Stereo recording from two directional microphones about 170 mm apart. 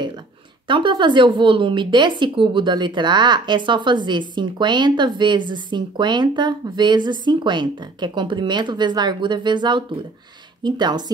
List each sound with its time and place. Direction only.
0.7 s speech: 30° right (ahead or behind)